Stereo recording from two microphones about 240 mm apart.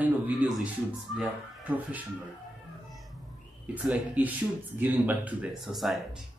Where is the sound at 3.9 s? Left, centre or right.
Centre.